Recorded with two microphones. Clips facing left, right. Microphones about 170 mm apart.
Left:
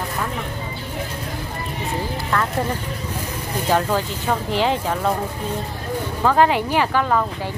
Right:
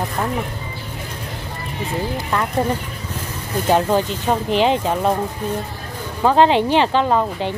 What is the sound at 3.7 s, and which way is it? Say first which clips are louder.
Speech: right 4 dB; 15° right (ahead or behind).